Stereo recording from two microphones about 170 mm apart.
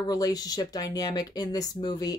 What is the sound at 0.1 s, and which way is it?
Speech, 20° left (ahead or behind).